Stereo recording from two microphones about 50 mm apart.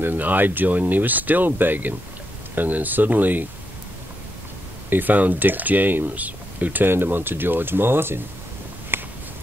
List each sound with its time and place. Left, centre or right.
0.0 s speech: right
4.8 s speech: right
8.9 s a sound: right